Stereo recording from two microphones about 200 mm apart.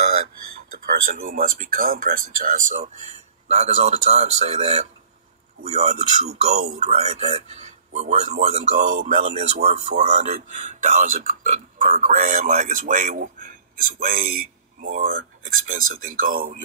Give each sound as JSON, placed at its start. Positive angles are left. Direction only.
{"t": 0.7, "sound": "a man's voice", "side_deg": -40}